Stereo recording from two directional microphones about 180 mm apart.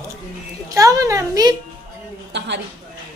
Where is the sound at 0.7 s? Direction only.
20° right (ahead or behind).